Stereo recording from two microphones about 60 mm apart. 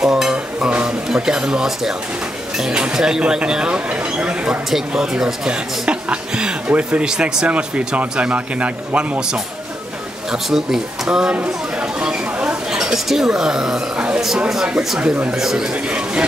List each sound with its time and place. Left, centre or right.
0.0 s dishes: centre
2.5 s speech: centre
4.6 s speech: centre
10.3 s speech: centre
12.0 s a sound: centre
14.5 s speech: centre